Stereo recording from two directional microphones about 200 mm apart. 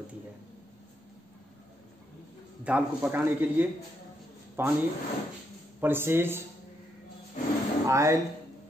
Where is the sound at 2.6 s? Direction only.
5° right (ahead or behind).